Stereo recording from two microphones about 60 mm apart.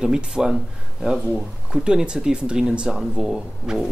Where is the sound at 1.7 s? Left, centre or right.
Centre.